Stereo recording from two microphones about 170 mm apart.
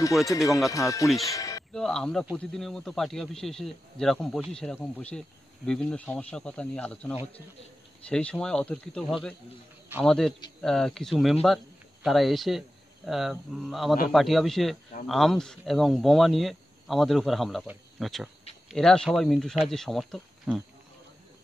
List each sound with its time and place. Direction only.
0.3 s speech: 20° left (ahead or behind)
1.7 s speech: 5° left (ahead or behind)